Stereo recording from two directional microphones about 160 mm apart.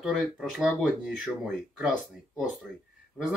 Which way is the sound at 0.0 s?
Centre (ahead or behind).